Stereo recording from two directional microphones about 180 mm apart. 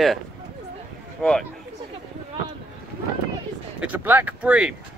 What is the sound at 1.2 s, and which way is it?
Speech, 5° left (ahead or behind).